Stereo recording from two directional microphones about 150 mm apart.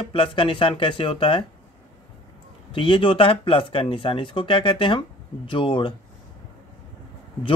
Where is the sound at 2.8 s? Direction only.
35° left (ahead or behind).